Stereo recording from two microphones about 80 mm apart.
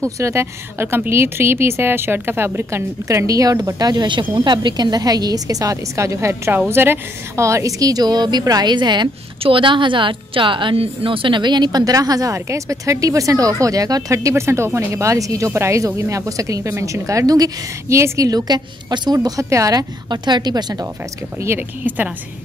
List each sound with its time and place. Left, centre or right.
0.0 s a woman's voice: right
18.3 s a woman's voice: right
19.1 s a woman's voice: right
20.1 s a woman's voice: right
21.5 s a woman's voice: right